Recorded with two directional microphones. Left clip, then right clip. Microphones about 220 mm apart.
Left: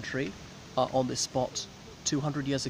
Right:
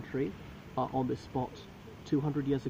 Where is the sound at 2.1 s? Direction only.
30° left (ahead or behind).